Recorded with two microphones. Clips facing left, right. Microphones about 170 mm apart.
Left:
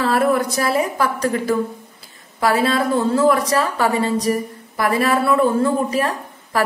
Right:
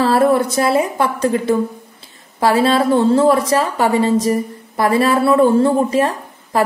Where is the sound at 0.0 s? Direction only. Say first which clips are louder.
Right 4 dB; 30° right (ahead or behind).